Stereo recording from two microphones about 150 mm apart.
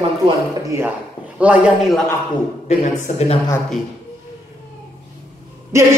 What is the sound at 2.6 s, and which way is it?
Speech, 50° left (ahead or behind).